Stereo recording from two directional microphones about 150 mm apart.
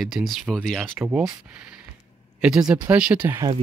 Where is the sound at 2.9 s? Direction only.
10° right (ahead or behind).